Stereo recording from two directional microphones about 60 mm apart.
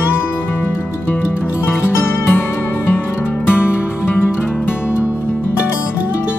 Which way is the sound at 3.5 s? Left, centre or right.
Left.